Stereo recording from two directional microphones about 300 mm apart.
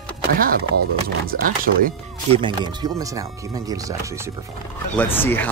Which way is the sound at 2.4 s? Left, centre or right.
Centre.